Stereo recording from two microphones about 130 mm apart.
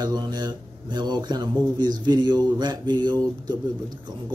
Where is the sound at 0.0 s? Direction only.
35° right (ahead or behind).